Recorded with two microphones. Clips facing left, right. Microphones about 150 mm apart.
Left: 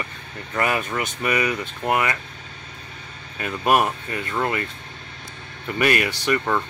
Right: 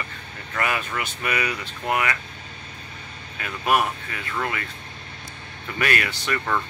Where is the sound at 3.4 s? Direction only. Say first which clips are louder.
Left 3 dB; 40° left (ahead or behind).